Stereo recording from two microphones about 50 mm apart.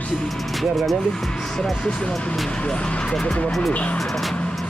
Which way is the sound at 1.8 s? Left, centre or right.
Centre.